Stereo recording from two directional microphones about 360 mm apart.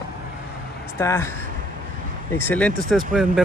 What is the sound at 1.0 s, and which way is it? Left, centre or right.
Speech, centre.